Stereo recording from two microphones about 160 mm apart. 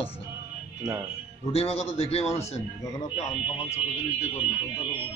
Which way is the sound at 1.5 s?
40° left (ahead or behind).